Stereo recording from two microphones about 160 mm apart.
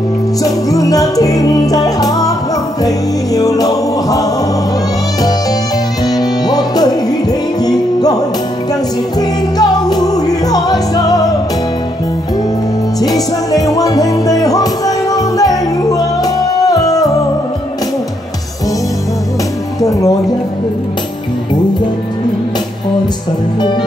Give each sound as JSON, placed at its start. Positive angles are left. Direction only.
{"t": 0.4, "sound": "music", "side_deg": 20}
{"t": 3.3, "sound": "music", "side_deg": 25}
{"t": 6.0, "sound": "music", "side_deg": 25}
{"t": 9.6, "sound": "music", "side_deg": 25}
{"t": 13.0, "sound": "music", "side_deg": 25}